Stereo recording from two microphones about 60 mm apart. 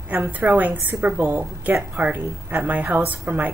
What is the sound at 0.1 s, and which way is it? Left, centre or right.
A woman's voice, right.